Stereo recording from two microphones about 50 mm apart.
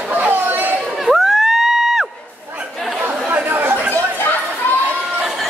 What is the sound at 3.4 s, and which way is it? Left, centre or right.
Chatter, right.